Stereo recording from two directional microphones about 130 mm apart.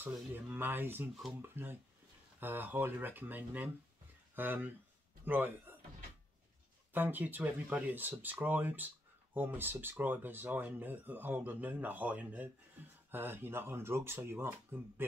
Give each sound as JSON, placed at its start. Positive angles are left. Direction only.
{"t": 0.0, "sound": "speech", "side_deg": -15}
{"t": 6.9, "sound": "speech", "side_deg": -15}